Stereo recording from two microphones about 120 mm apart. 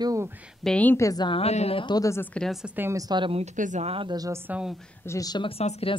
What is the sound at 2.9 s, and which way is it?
Speech, 40° right (ahead or behind).